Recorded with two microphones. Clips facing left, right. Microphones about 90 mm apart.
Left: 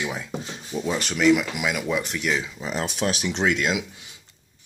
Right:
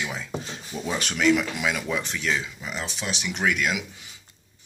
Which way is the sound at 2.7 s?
50° left (ahead or behind).